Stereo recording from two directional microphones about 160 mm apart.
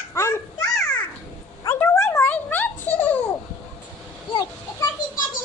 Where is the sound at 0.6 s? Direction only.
5° left (ahead or behind).